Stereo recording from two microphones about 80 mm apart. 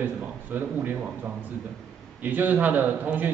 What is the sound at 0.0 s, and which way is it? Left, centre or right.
A man's voice, right.